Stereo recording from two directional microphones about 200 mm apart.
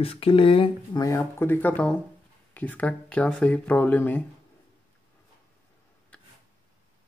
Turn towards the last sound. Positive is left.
turn(degrees=5)  # may be behind; listen again after turning